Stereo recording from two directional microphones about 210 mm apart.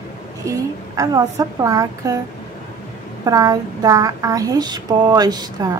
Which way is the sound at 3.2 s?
15° right (ahead or behind).